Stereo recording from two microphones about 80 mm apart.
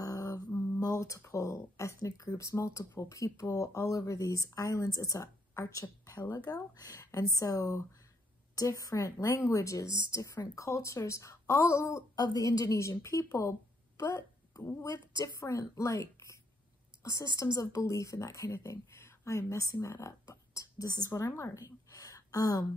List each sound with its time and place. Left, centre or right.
0.0 s mantra: left
0.7 s speech: left
12.2 s a woman's voice: left
21.2 s speech: left
21.5 s gasp: left